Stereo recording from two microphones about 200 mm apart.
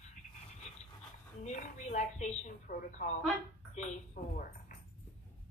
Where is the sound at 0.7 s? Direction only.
35° left (ahead or behind).